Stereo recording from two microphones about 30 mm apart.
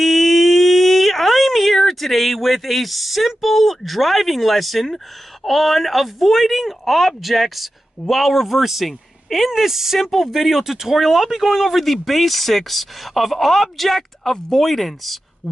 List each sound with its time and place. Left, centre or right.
0.0 s a sound: centre
4.9 s speech: centre
15.4 s speech: right